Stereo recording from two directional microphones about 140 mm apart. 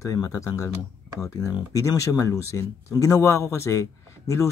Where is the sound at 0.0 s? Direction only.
25° left (ahead or behind).